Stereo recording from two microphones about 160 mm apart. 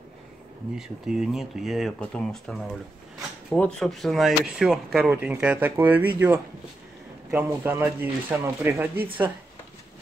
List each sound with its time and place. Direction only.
0.7 s speech: 5° right (ahead or behind)